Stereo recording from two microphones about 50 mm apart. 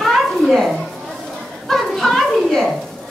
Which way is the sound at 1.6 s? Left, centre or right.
Centre.